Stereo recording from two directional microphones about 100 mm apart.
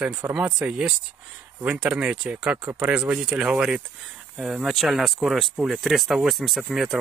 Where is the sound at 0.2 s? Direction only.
20° right (ahead or behind).